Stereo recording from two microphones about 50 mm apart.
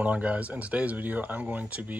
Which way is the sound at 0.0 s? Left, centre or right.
Right.